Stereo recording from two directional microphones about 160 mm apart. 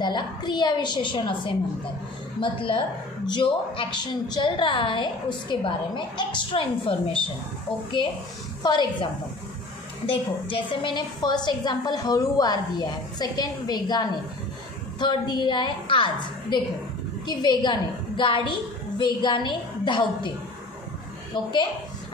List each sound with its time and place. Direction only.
0.0 s a woman's voice: 30° left (ahead or behind)
8.6 s a woman's voice: 30° left (ahead or behind)